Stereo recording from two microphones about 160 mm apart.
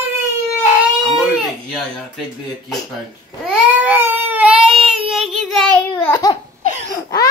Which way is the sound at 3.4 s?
5° right (ahead or behind).